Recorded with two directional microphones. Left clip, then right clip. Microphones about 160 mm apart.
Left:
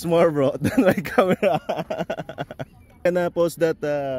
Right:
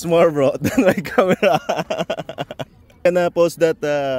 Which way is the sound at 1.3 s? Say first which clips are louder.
Right 5 dB; 15° right (ahead or behind).